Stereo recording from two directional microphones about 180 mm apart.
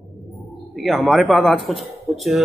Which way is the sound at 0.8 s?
Centre (ahead or behind).